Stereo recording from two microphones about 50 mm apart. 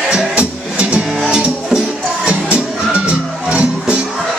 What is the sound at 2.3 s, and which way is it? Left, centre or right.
Music, right.